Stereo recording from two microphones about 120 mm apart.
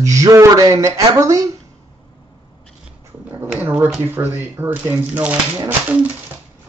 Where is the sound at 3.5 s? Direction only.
10° right (ahead or behind).